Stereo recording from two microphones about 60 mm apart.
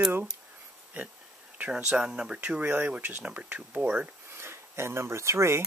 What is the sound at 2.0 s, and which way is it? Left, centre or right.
Speech, centre.